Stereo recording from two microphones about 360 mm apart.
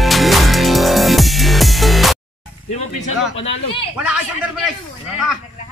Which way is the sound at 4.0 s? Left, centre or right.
Centre.